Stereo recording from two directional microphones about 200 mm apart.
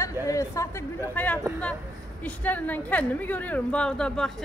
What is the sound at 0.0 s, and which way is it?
A woman's voice, 15° left (ahead or behind).